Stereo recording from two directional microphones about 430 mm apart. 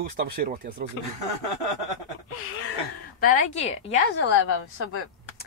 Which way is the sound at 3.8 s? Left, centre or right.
Left.